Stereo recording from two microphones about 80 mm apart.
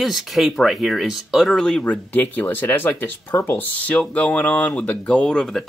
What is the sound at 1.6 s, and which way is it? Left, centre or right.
Speech, centre.